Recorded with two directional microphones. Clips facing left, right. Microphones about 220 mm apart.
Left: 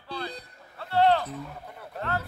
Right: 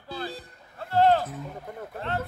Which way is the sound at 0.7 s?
45° right (ahead or behind).